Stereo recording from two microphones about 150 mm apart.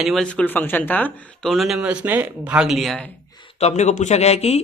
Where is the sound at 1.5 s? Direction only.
Centre (ahead or behind).